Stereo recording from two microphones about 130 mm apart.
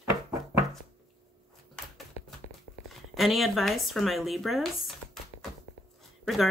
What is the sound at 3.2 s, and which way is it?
Speech, centre (ahead or behind).